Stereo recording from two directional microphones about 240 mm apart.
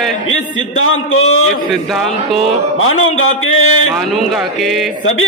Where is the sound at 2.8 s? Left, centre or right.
Left.